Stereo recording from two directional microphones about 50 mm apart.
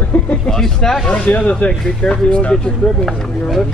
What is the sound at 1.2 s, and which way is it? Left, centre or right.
Speech, left.